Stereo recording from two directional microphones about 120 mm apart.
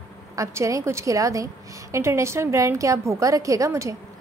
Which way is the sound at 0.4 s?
25° right (ahead or behind).